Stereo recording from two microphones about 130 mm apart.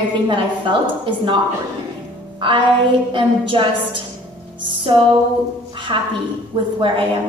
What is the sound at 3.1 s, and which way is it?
Speech, 40° right (ahead or behind).